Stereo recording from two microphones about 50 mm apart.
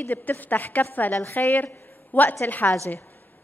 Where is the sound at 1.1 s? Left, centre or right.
Left.